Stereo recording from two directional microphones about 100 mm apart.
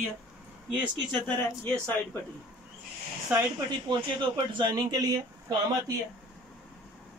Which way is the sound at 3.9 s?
50° right (ahead or behind).